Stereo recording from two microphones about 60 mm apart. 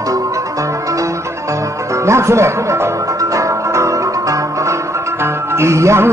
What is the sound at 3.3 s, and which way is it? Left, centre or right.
Music, right.